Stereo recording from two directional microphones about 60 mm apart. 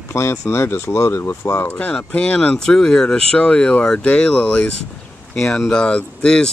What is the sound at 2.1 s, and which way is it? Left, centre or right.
Speech, centre.